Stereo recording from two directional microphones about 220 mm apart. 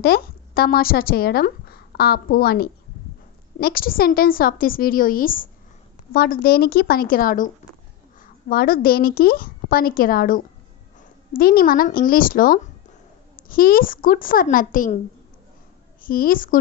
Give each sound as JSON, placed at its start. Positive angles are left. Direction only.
{"t": 0.0, "sound": "a woman's voice", "side_deg": 45}
{"t": 16.0, "sound": "a woman's voice", "side_deg": 40}